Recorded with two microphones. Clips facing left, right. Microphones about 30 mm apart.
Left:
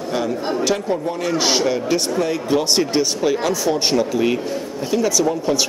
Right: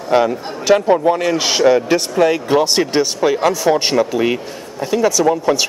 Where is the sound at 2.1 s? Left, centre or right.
Right.